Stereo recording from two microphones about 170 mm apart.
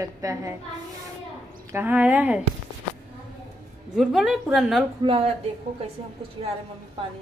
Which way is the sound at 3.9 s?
Centre (ahead or behind).